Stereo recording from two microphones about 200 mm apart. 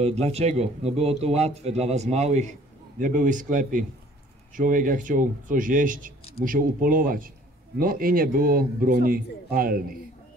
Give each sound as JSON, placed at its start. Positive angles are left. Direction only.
{"t": 0.0, "sound": "a man's voice", "side_deg": -30}